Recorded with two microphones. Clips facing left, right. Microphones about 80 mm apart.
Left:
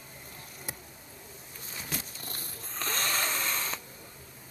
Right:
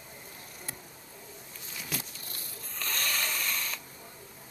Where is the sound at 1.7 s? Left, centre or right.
Left.